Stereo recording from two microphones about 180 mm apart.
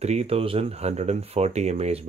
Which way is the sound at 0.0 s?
35° right (ahead or behind).